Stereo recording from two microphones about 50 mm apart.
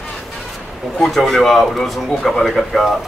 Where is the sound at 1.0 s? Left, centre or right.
Centre.